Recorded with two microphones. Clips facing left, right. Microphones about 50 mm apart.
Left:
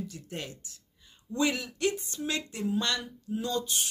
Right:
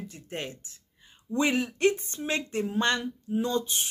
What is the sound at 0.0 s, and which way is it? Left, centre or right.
Speech, right.